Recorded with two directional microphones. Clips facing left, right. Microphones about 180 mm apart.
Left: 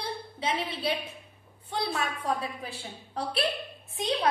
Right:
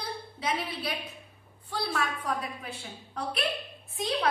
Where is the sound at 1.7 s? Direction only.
20° left (ahead or behind).